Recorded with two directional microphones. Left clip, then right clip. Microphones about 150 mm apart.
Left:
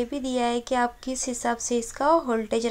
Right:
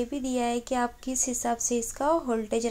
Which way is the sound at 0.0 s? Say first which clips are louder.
Left 3 dB; 15° left (ahead or behind).